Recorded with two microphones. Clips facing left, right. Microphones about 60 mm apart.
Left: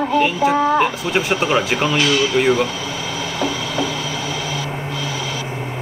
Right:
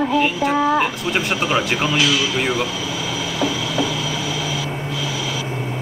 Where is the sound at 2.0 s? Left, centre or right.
Left.